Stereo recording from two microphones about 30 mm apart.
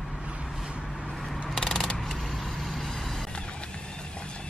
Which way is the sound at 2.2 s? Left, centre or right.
Centre.